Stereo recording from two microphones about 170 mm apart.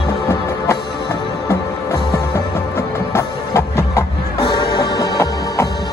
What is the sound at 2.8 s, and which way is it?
Music, 15° left (ahead or behind).